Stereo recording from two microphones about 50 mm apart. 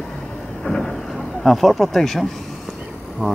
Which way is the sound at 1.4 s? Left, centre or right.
Centre.